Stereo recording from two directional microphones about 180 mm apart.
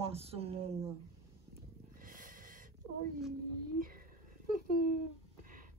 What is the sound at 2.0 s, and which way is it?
Snort, 50° right (ahead or behind).